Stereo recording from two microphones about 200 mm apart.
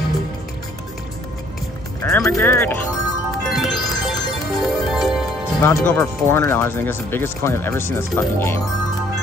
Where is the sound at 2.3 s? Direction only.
10° left (ahead or behind).